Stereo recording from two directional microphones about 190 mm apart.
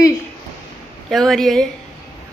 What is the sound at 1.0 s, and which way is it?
Speech, centre (ahead or behind).